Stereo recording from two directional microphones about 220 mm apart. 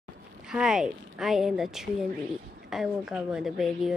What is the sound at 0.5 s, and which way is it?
A woman's voice, centre (ahead or behind).